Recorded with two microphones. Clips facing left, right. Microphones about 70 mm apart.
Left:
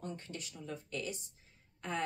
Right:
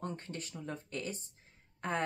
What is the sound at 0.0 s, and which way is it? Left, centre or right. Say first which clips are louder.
Speech: right 3 dB; right.